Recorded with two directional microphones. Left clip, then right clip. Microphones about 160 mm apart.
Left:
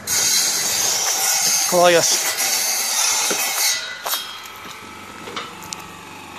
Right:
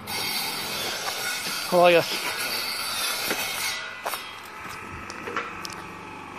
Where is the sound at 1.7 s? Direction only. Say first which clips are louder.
Left 3 dB; 5° left (ahead or behind).